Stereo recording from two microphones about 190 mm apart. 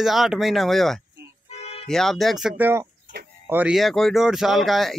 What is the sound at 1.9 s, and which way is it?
Speech, centre (ahead or behind).